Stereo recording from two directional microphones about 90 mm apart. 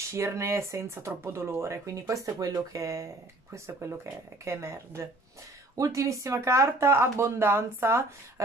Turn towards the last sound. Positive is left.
turn(degrees=-25)  # may be behind; listen again after turning